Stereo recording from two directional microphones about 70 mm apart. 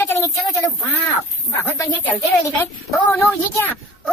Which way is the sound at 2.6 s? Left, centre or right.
Left.